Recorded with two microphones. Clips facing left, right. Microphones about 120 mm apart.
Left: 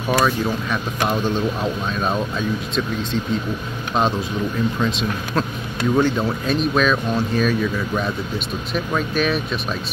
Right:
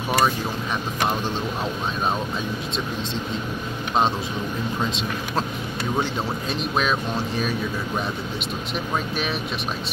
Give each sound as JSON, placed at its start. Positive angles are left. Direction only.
{"t": 5.9, "sound": "speech", "side_deg": -25}
{"t": 8.9, "sound": "speech", "side_deg": -25}